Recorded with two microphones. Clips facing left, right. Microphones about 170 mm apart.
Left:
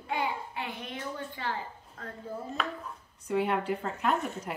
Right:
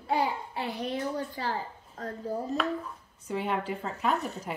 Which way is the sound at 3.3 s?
Centre (ahead or behind).